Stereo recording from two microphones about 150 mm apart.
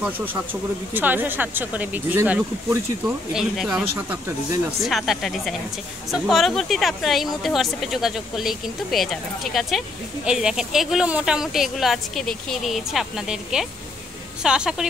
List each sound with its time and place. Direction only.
0.0 s speech: 10° right (ahead or behind)
3.3 s speech: 5° right (ahead or behind)
3.9 s speech: 20° right (ahead or behind)
4.8 s speech: centre (ahead or behind)